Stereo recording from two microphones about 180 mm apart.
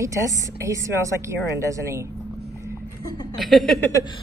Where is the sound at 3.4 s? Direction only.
Centre (ahead or behind).